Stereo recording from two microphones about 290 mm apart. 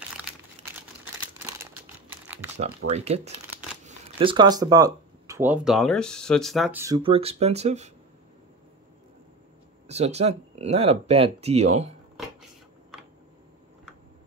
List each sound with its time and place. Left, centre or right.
0.2 s crumpling: centre
1.6 s typing: centre
2.9 s speech: right
9.8 s speech: right